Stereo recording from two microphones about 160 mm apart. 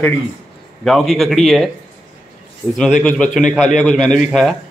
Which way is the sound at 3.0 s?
5° left (ahead or behind).